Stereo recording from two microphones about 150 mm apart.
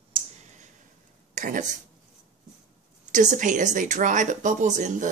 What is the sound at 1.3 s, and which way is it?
Speech, 60° right (ahead or behind).